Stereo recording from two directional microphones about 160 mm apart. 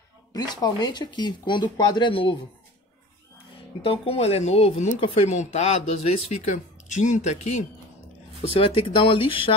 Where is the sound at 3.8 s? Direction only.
35° left (ahead or behind).